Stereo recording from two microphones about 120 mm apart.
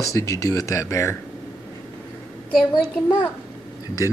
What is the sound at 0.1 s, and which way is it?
Speech, 25° left (ahead or behind).